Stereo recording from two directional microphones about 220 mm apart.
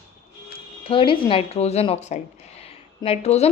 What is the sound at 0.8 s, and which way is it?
A woman's voice, 25° left (ahead or behind).